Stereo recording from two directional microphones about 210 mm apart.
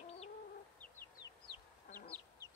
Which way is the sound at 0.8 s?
10° left (ahead or behind).